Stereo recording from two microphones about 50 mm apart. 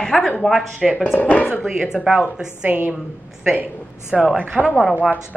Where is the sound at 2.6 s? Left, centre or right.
Right.